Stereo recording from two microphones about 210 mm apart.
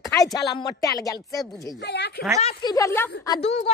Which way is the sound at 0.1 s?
15° left (ahead or behind).